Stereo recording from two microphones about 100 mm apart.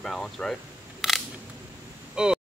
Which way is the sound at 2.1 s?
10° right (ahead or behind).